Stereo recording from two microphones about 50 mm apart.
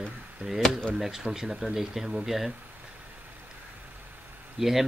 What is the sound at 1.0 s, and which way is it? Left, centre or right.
Speech, centre.